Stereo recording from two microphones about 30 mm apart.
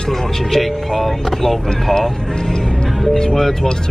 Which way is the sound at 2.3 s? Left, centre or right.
Left.